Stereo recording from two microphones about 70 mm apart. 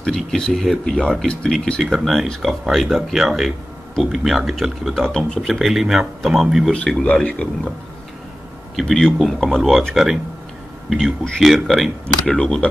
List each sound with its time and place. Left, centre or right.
0.0 s a man's voice: centre
1.8 s speech: centre
7.0 s a man's voice: centre
8.7 s speech: centre
10.9 s speech: centre
12.3 s a man's voice: centre